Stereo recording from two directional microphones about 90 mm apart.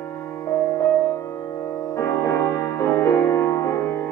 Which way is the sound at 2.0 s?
35° left (ahead or behind).